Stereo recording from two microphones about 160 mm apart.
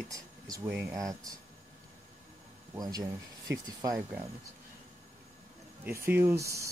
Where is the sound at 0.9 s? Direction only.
20° right (ahead or behind).